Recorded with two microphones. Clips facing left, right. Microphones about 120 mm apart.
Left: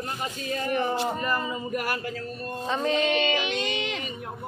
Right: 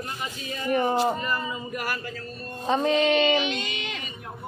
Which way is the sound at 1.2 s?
45° left (ahead or behind).